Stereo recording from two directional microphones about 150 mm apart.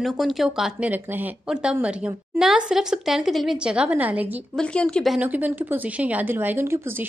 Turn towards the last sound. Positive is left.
turn(degrees=-15)  # may be behind; listen again after turning